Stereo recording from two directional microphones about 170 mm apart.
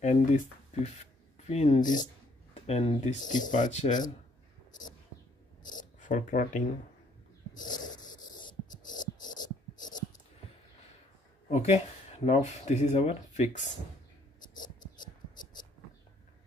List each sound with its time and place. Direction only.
0.0 s speech: 45° left (ahead or behind)
1.5 s speech: 40° left (ahead or behind)
5.9 s speech: 50° left (ahead or behind)
7.8 s wheeze: 25° left (ahead or behind)
11.5 s speech: 40° left (ahead or behind)